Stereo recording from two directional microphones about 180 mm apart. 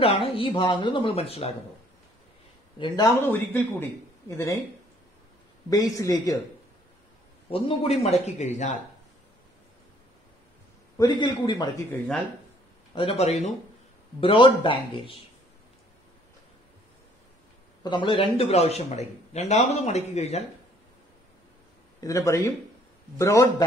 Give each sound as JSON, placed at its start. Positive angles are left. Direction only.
{"t": 0.0, "sound": "speech", "side_deg": 30}
{"t": 3.3, "sound": "a man's voice", "side_deg": 10}
{"t": 5.7, "sound": "speech", "side_deg": 20}
{"t": 7.4, "sound": "a man's voice", "side_deg": 30}
{"t": 11.0, "sound": "speech", "side_deg": 25}
{"t": 11.9, "sound": "speech", "side_deg": 5}
{"t": 12.9, "sound": "a man's voice", "side_deg": 30}
{"t": 17.8, "sound": "a man's voice", "side_deg": 25}
{"t": 22.0, "sound": "a man's voice", "side_deg": 20}